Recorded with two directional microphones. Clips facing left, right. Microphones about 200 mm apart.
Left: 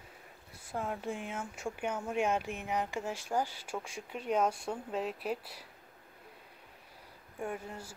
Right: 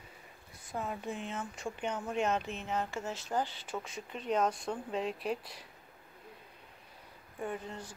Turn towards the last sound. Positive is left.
turn(degrees=10)  # may be behind; listen again after turning